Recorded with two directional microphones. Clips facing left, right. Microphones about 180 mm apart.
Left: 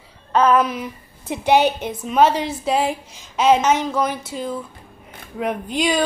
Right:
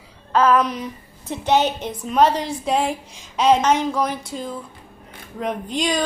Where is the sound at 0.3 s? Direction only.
Centre (ahead or behind).